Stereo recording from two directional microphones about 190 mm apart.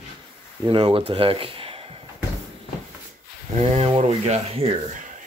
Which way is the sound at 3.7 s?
35° right (ahead or behind).